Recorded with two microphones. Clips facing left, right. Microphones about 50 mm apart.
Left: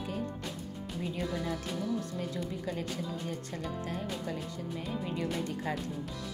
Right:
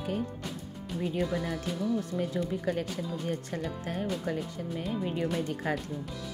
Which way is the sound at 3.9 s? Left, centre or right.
Right.